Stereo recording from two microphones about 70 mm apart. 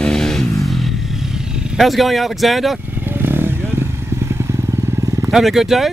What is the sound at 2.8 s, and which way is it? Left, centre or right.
Motorcycle, right.